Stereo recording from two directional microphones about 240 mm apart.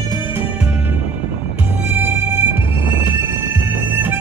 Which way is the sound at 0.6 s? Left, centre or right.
Centre.